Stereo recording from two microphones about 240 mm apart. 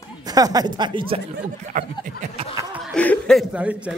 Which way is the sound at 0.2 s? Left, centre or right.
Centre.